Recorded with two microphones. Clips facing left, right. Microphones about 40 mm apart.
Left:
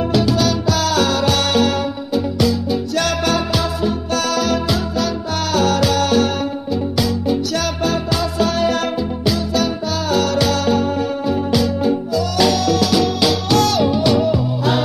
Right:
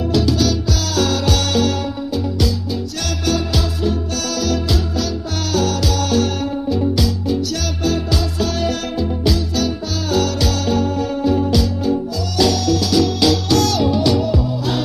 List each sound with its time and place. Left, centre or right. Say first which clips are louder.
0.1 s music: right 1 dB; left
4.4 s music: left 2 dB; left
7.8 s music: right 2 dB; left
11.5 s music: left 1 dB; left
13.2 s music: even; centre